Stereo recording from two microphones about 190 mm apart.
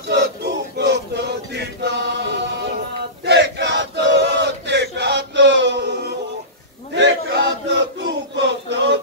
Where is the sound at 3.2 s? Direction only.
65° right (ahead or behind).